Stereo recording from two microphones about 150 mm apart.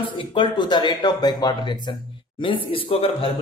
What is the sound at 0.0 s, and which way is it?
Speech, 35° left (ahead or behind).